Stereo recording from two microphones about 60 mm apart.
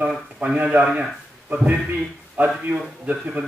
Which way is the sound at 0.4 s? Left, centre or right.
Centre.